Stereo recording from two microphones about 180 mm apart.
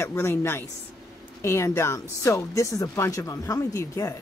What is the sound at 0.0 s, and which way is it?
Speech, 15° left (ahead or behind).